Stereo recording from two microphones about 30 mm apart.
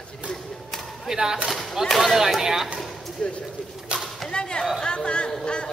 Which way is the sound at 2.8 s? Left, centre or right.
Centre.